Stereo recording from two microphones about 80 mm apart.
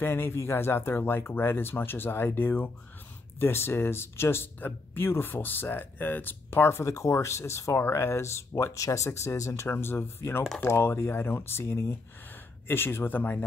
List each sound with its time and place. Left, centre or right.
0.0 s speech: left
8.7 s speech: left